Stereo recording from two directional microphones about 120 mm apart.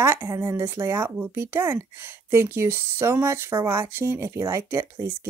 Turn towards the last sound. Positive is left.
turn(degrees=-20)  # may be behind; listen again after turning